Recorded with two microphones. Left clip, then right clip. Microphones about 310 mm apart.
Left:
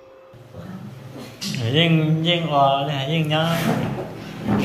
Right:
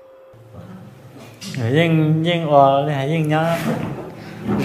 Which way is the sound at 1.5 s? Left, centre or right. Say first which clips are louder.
Right 2 dB; centre.